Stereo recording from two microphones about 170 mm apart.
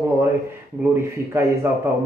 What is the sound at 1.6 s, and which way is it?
Speech, 15° right (ahead or behind).